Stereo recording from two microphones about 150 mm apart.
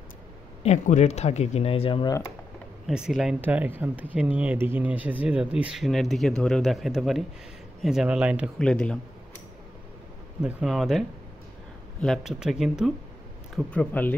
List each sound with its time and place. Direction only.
0.7 s speech: 50° left (ahead or behind)
2.9 s speech: centre (ahead or behind)
3.3 s speech: 15° right (ahead or behind)
8.5 s speech: 5° left (ahead or behind)
10.4 s speech: centre (ahead or behind)
13.6 s speech: 10° left (ahead or behind)